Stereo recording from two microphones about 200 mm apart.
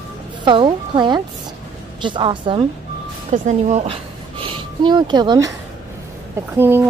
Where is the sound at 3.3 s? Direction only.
40° right (ahead or behind); by 6.8 s 10° right (ahead or behind).